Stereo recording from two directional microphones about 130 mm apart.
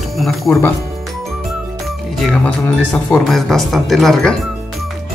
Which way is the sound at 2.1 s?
5° left (ahead or behind).